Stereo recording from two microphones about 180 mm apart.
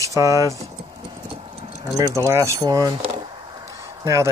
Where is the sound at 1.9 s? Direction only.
20° right (ahead or behind).